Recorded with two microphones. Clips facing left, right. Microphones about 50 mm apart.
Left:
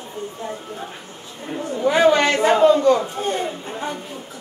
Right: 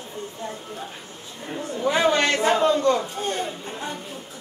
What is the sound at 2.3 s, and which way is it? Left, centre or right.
Music, centre.